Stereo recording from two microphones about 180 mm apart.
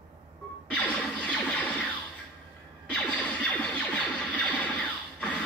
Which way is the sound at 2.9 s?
5° left (ahead or behind).